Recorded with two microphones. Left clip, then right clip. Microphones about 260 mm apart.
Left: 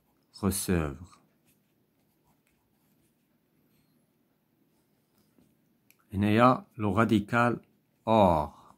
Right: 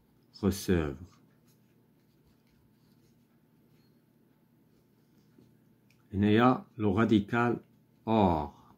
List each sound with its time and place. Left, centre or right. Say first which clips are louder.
0.4 s speech: even; left
6.0 s speech: left 3 dB; left